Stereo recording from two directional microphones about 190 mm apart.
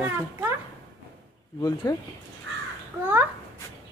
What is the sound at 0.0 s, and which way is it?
Speech, 15° right (ahead or behind).